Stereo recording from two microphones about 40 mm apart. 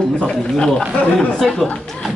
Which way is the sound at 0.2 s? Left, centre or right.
Left.